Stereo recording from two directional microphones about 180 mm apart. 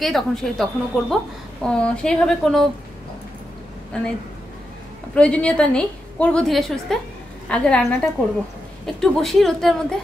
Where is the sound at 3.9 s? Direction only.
5° left (ahead or behind).